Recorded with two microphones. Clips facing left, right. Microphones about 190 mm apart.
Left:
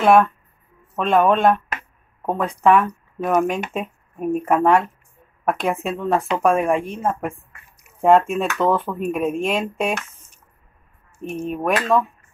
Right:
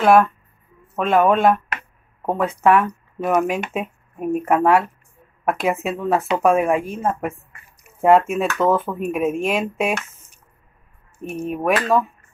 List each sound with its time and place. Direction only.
0.0 s speech: centre (ahead or behind)
11.3 s speech: 10° right (ahead or behind)